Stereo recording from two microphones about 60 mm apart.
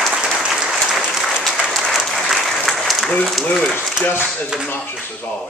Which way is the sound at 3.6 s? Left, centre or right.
Centre.